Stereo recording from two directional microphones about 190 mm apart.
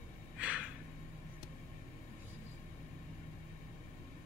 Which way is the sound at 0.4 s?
5° right (ahead or behind).